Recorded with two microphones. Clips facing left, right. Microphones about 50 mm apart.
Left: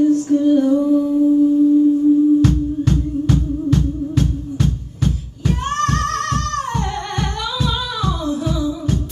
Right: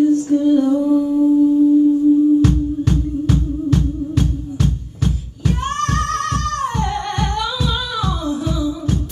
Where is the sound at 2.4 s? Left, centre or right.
Centre.